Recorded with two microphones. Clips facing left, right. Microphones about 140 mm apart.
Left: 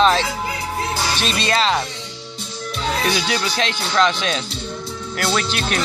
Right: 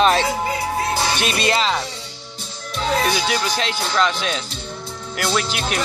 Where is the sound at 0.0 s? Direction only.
10° right (ahead or behind).